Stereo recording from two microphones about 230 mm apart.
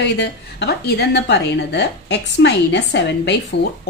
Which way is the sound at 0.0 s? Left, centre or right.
Left.